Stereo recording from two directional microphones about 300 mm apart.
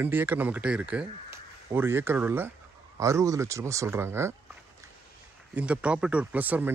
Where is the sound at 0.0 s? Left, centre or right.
Centre.